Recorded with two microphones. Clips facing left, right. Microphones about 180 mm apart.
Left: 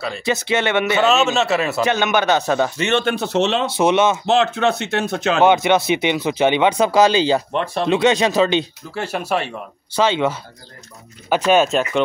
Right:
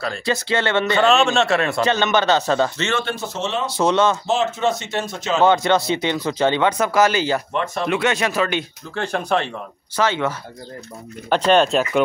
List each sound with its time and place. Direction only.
0.2 s speech: 20° left (ahead or behind)
0.8 s a man's voice: 5° left (ahead or behind)
3.1 s speech: 65° left (ahead or behind)
3.6 s speech: 20° left (ahead or behind)
4.3 s speech: 70° left (ahead or behind)
5.4 s speech: 20° left (ahead or behind)
6.1 s a man's voice: 10° left (ahead or behind)
6.9 s speech: 30° left (ahead or behind)
8.9 s a man's voice: 10° left (ahead or behind)
9.9 s speech: 20° left (ahead or behind)
11.2 s a man's voice: 10° left (ahead or behind)